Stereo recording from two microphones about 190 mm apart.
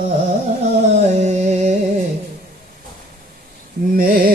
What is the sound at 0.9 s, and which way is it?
Music, 35° right (ahead or behind).